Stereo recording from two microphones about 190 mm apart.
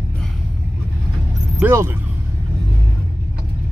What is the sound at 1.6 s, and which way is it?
Speech, 15° right (ahead or behind).